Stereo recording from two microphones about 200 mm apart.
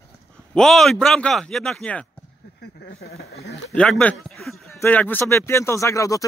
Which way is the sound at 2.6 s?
50° left (ahead or behind).